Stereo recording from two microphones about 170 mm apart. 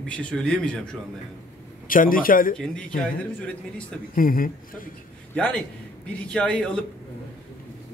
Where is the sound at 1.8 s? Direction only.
55° left (ahead or behind).